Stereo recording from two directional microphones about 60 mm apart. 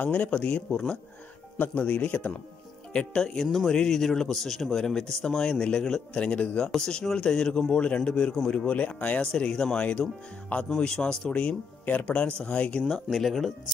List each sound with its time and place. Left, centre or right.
0.0 s speech: left
1.6 s speech: left
6.7 s speech: centre; by 9.2 s left
9.2 s speech: centre
11.8 s speech: left
13.1 s speech: centre